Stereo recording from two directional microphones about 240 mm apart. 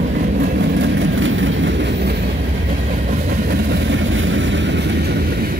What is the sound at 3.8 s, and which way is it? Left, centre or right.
Vehicle, right.